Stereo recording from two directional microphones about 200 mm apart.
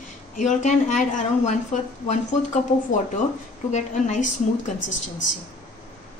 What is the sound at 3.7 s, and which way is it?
Speech, 35° left (ahead or behind).